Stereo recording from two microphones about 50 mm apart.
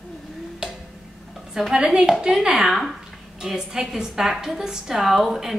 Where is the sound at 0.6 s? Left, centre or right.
Centre.